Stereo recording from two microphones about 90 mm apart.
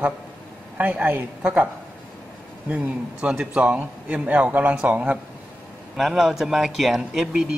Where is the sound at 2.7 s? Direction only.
10° right (ahead or behind).